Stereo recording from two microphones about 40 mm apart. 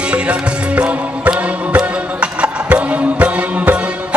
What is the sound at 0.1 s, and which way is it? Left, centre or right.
Music, right.